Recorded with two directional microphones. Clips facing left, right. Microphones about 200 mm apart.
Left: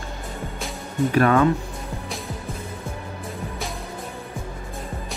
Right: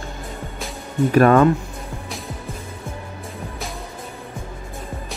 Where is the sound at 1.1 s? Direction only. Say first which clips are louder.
Right 5 dB; 45° right (ahead or behind).